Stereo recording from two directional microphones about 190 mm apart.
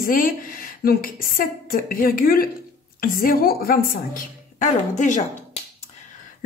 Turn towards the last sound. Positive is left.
turn(degrees=40)  # may be behind; listen again after turning